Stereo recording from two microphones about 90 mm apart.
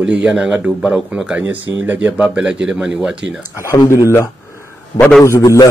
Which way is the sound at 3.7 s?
40° left (ahead or behind).